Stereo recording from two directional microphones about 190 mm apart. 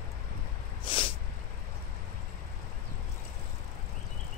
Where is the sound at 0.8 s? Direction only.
25° left (ahead or behind).